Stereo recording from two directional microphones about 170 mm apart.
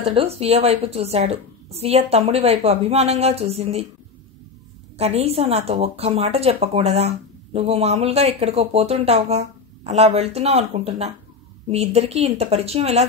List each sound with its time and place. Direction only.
0.0 s a woman's voice: 35° right (ahead or behind)
4.9 s a woman's voice: 40° right (ahead or behind)